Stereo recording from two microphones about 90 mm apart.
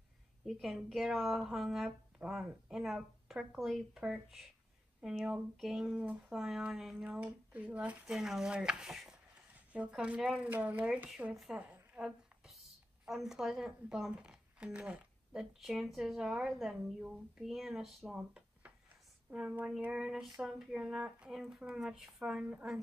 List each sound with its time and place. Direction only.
0.5 s speech: centre (ahead or behind)
5.9 s speech: 15° right (ahead or behind)
6.3 s speech: 5° right (ahead or behind)
7.1 s a woman's voice: 15° right (ahead or behind)
13.0 s speech: 5° right (ahead or behind)